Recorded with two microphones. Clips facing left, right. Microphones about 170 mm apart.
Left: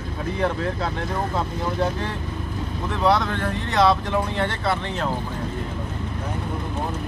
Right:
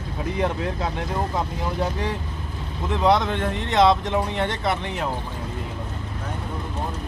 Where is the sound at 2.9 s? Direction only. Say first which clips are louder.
Right 1 dB; 20° right (ahead or behind).